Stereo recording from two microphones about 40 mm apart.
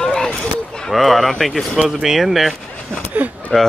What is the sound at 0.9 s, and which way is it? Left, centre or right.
Speech, centre.